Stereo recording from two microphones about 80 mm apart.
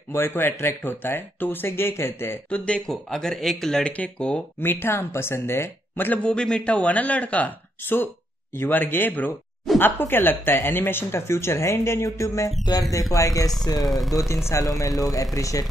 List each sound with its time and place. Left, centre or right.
0.1 s speech: left
2.5 s speech: centre
4.6 s speech: left
12.7 s speech: left
13.1 s speech: left
13.8 s speech: centre
14.8 s speech: left